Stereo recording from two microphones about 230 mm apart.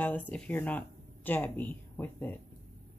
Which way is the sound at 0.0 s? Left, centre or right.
Centre.